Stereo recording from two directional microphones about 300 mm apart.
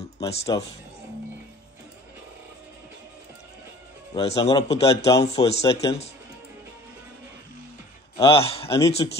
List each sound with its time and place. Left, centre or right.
0.2 s a man's voice: centre
4.4 s a man's voice: centre
8.3 s a man's voice: centre